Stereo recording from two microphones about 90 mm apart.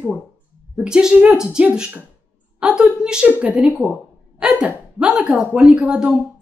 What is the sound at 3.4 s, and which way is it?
A woman's voice, 10° right (ahead or behind).